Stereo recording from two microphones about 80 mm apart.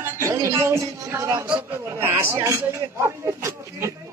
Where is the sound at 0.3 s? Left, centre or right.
Right.